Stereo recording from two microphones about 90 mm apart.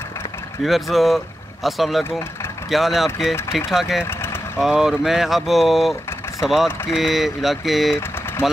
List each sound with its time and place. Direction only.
0.7 s speech: centre (ahead or behind)
4.0 s vehicle: 25° left (ahead or behind)
4.6 s speech: 5° right (ahead or behind)